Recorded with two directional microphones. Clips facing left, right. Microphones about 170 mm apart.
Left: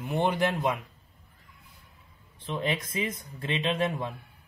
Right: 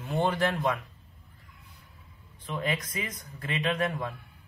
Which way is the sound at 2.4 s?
25° left (ahead or behind).